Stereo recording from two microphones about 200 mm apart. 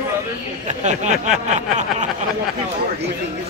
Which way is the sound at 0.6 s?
35° right (ahead or behind).